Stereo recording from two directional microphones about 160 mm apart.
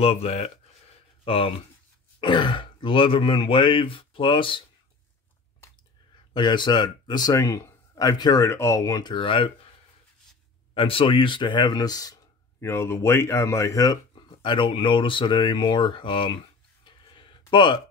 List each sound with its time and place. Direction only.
0.0 s a man's voice: 40° left (ahead or behind)
6.3 s speech: 30° left (ahead or behind)
10.7 s speech: 35° left (ahead or behind)
16.8 s a sound: 30° left (ahead or behind)